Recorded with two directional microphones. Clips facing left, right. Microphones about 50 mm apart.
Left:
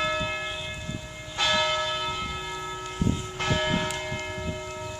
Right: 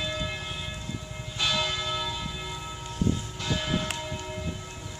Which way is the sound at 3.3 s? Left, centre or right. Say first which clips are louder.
Left 4 dB; left.